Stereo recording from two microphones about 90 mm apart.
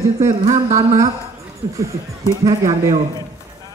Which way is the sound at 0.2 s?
35° right (ahead or behind).